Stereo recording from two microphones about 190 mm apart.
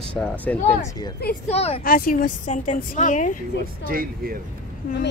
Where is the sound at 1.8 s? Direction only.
50° left (ahead or behind).